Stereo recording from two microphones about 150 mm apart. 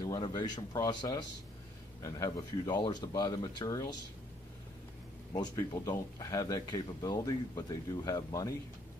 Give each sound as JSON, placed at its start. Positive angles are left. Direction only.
{"t": 0.0, "sound": "speech", "side_deg": 25}
{"t": 5.3, "sound": "speech", "side_deg": 30}